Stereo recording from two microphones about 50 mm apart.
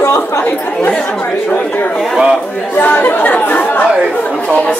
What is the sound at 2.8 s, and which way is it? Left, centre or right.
Speech, left.